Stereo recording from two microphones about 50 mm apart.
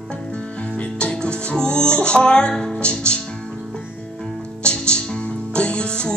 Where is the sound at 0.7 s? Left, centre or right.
Left.